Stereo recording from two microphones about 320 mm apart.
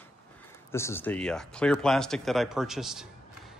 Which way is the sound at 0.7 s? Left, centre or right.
Centre.